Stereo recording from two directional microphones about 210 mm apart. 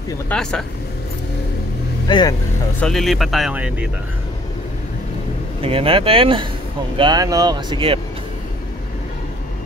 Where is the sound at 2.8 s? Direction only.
Centre (ahead or behind).